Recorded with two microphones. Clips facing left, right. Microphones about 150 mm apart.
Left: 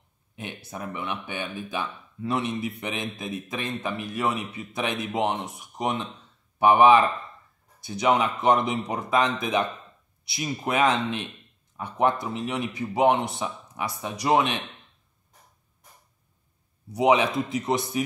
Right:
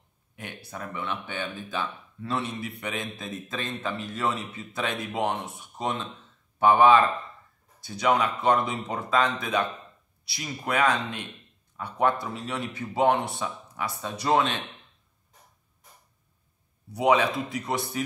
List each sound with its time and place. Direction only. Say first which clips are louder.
0.4 s a man's voice: left 2 dB; 20° left (ahead or behind)
16.9 s a man's voice: left 2 dB; 20° left (ahead or behind)